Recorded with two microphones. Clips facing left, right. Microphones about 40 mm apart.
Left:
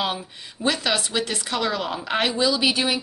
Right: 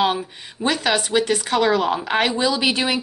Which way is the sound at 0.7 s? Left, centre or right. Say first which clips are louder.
Right 3 dB; centre.